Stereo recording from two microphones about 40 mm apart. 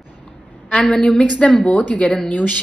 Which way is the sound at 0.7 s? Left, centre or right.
Left.